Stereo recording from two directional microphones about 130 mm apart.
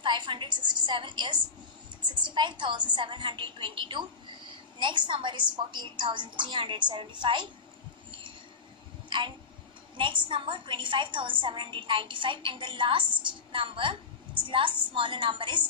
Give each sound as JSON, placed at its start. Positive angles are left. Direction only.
{"t": 0.0, "sound": "a woman's voice", "side_deg": -35}
{"t": 9.9, "sound": "a woman's voice", "side_deg": -40}